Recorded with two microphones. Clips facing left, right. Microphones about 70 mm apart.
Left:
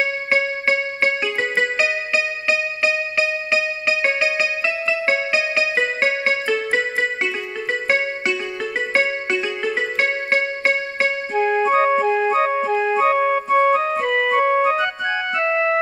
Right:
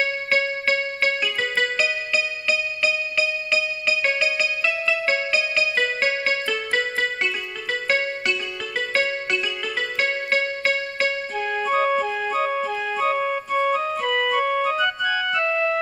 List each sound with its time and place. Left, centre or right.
0.0 s music: left
8.9 s music: left